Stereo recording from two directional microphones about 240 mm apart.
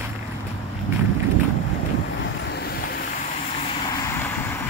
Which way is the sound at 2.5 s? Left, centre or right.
Left.